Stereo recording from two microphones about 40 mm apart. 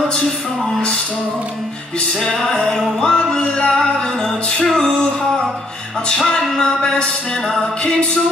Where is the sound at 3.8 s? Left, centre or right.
Centre.